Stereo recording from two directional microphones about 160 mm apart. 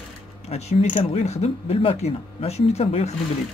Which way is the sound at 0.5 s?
40° left (ahead or behind).